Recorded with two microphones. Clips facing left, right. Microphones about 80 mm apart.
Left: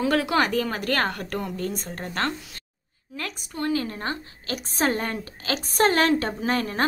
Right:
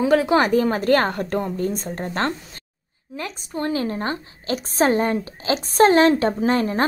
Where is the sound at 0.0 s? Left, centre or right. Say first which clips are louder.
Right 5 dB; right.